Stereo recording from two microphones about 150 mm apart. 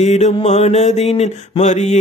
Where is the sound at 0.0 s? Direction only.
50° left (ahead or behind).